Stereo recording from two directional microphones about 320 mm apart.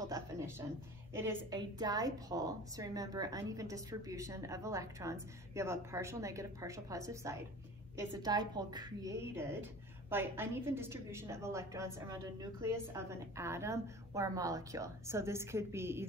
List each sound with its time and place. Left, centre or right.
0.1 s a woman's voice: centre